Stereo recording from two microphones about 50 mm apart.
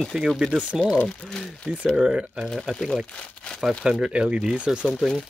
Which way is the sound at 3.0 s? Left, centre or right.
Left.